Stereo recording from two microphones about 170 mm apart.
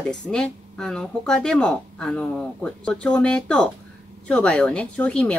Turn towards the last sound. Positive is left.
turn(degrees=5)  # may be behind; listen again after turning